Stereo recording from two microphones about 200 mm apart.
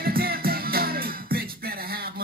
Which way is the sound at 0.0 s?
50° right (ahead or behind).